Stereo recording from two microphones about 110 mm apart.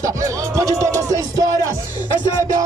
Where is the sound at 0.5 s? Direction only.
30° right (ahead or behind).